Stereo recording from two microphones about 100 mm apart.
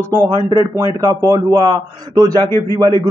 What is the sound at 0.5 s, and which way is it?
A man's voice, 40° right (ahead or behind).